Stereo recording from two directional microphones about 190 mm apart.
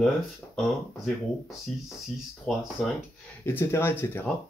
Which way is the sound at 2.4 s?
Centre (ahead or behind).